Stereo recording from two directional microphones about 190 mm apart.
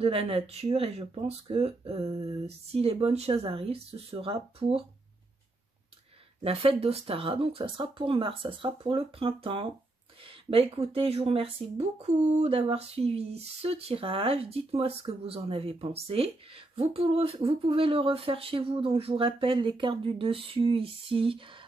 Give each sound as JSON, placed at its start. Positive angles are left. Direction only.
{"t": 0.0, "sound": "speech", "side_deg": -30}
{"t": 6.4, "sound": "speech", "side_deg": -30}